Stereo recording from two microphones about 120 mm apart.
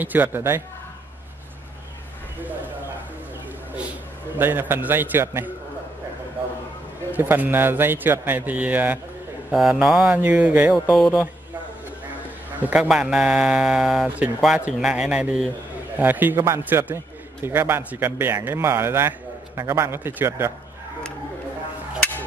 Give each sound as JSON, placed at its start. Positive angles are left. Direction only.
{"t": 0.0, "sound": "a man's voice", "side_deg": -15}
{"t": 4.4, "sound": "a man's voice", "side_deg": -15}
{"t": 7.1, "sound": "a man's voice", "side_deg": -15}
{"t": 11.0, "sound": "speech", "side_deg": 0}
{"t": 12.5, "sound": "a man's voice", "side_deg": -15}